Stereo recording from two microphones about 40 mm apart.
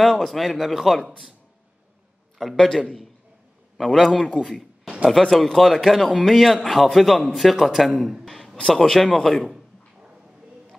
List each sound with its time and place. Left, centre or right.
0.0 s speech: centre
2.4 s speech: centre
3.7 s speech: centre
4.3 s speech: centre
5.1 s speech: centre
8.5 s speech: centre